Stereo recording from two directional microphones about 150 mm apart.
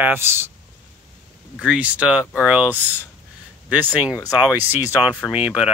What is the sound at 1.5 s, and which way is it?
Speech, 5° right (ahead or behind).